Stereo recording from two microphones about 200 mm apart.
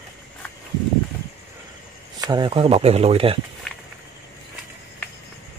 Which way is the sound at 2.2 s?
20° right (ahead or behind).